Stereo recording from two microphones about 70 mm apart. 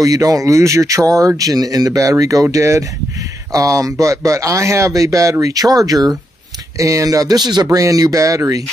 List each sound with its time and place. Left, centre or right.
0.0 s speech: right
6.8 s speech: right
7.7 s speech: right